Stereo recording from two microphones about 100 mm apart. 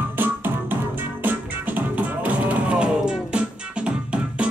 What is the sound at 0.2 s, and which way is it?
Music, 20° right (ahead or behind).